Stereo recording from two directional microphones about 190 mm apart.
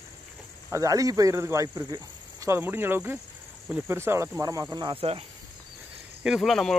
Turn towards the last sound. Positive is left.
turn(degrees=0)  # may be behind; listen again after turning